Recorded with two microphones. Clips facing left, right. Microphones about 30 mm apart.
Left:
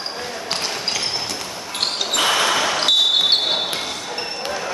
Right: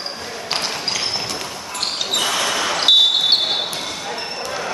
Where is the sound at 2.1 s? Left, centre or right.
Left.